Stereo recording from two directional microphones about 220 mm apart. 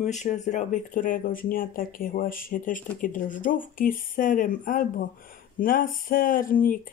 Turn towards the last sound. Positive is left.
turn(degrees=40)  # may be behind; listen again after turning